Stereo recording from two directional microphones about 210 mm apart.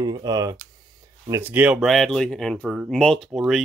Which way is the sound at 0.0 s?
20° right (ahead or behind).